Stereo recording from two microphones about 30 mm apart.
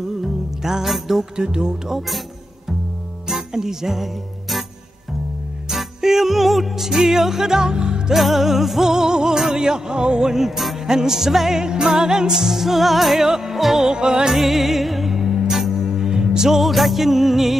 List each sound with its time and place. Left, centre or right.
0.2 s music: centre
0.8 s music: centre
1.3 s music: right
1.9 s music: centre
3.3 s music: centre
5.7 s music: centre; by 8.0 s right
8.1 s music: centre; by 10.3 s right
10.3 s music: centre
10.8 s music: centre
11.6 s music: right; by 13.8 s centre
13.8 s music: right
14.3 s music: centre
15.2 s music: centre
16.4 s music: centre